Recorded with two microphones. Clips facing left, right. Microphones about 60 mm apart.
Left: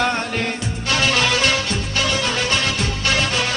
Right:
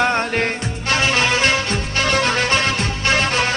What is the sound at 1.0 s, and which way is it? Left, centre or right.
Music, right.